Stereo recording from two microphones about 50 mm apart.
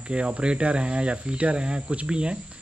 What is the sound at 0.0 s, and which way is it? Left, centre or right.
Speech, right.